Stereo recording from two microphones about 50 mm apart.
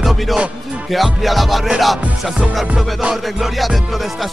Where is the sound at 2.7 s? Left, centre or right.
Centre.